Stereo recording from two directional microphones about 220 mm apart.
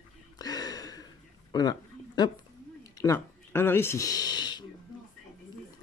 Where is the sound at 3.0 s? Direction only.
10° left (ahead or behind).